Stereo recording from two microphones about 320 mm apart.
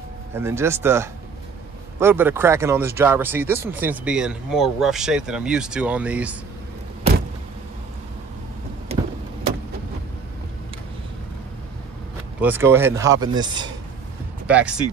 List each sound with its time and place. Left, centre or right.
0.3 s speech: centre
12.4 s speech: centre